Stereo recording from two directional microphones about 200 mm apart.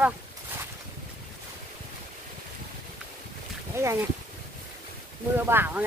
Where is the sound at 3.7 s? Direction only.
15° right (ahead or behind).